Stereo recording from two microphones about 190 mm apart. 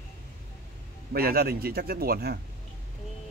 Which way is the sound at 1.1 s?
50° right (ahead or behind).